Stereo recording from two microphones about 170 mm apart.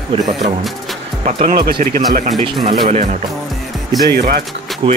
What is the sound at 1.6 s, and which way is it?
Speech, 60° right (ahead or behind).